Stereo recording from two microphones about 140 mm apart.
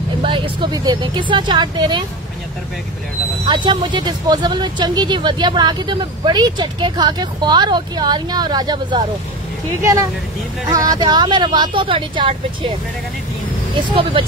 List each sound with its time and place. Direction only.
0.2 s speech: 35° right (ahead or behind)
3.4 s speech: 35° right (ahead or behind)
10.7 s speech: 25° right (ahead or behind)
13.7 s speech: 40° right (ahead or behind)